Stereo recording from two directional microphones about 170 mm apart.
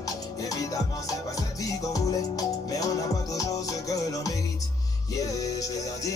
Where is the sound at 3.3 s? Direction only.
20° left (ahead or behind).